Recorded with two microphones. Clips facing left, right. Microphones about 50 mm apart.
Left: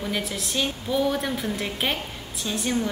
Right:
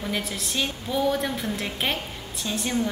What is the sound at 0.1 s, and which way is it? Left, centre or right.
A woman's voice, centre.